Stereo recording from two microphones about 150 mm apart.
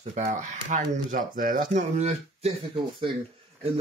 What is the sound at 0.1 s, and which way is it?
Speech, 55° right (ahead or behind).